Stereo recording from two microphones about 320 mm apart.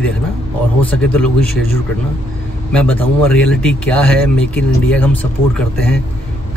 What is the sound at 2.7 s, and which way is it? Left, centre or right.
Speech, centre.